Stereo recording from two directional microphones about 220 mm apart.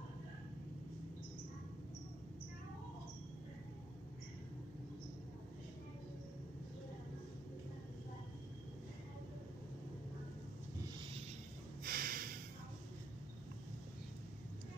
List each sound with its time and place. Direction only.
11.8 s snort: 40° right (ahead or behind)